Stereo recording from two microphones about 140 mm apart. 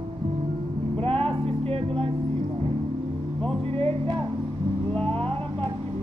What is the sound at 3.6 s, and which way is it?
Music, 45° right (ahead or behind).